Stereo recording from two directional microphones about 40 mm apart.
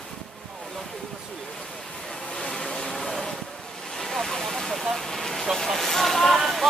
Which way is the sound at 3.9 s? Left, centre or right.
Centre.